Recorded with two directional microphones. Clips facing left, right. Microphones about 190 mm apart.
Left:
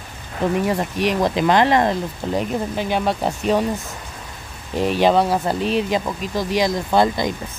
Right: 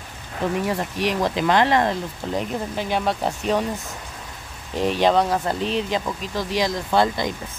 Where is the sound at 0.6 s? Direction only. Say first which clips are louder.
Left 3 dB; 20° left (ahead or behind).